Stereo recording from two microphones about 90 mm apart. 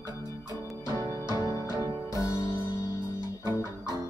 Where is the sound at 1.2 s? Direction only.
40° right (ahead or behind).